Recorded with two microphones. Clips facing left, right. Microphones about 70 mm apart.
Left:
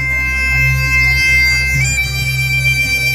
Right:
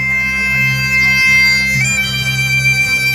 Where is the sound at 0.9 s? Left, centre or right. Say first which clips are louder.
Right 2 dB; right.